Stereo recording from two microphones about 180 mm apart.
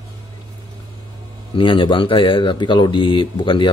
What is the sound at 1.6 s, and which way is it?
Speech, 25° left (ahead or behind).